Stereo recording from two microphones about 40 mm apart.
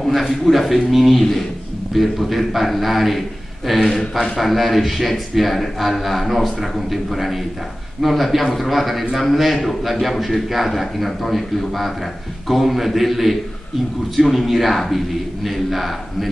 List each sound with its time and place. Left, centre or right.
0.0 s a man's voice: centre